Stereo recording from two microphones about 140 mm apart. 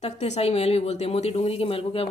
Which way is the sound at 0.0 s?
50° left (ahead or behind).